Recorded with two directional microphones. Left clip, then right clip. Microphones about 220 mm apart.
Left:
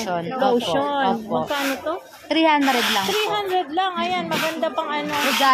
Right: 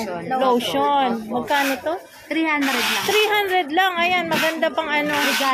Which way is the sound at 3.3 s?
20° right (ahead or behind).